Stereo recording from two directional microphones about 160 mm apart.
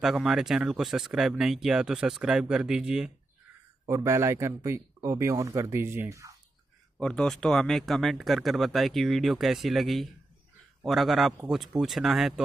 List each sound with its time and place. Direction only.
0.0 s speech: centre (ahead or behind)
3.8 s speech: 20° right (ahead or behind)
7.0 s speech: 5° left (ahead or behind)